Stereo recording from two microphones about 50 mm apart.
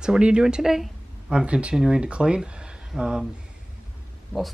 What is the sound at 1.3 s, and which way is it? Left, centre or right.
Speech, centre.